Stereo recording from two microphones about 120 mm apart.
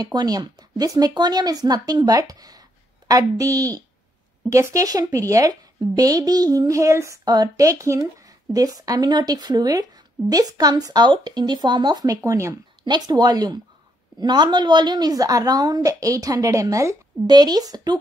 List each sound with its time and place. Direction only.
0.0 s a woman's voice: 35° right (ahead or behind)